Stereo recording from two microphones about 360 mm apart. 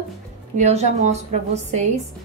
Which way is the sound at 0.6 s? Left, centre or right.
Centre.